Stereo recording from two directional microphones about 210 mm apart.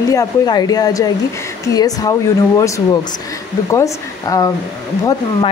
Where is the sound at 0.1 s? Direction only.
15° left (ahead or behind).